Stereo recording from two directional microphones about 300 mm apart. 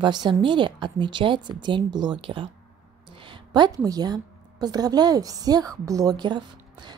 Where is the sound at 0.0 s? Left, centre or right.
Centre.